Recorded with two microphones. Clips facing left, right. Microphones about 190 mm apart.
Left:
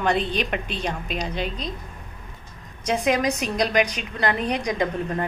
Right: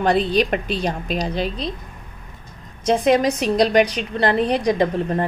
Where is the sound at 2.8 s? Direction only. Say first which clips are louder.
Right 5 dB; 30° right (ahead or behind).